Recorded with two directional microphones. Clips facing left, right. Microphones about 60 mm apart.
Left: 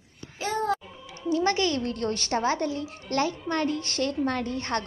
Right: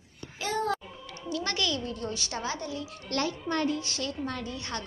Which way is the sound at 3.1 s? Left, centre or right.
Left.